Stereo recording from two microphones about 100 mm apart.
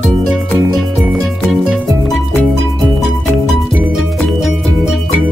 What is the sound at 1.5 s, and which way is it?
Music, centre (ahead or behind).